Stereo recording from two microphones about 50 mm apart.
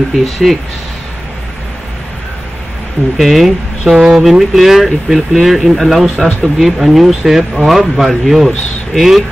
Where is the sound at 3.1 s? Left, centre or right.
Centre.